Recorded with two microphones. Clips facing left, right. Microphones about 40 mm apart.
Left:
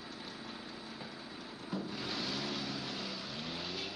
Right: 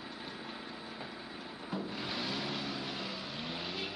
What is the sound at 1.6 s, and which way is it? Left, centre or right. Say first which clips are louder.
Vehicle: right 1 dB; centre.